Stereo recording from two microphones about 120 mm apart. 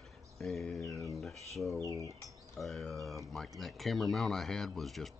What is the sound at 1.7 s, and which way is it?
Cutlery, 25° left (ahead or behind).